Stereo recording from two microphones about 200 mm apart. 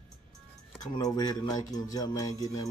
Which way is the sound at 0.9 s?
20° left (ahead or behind).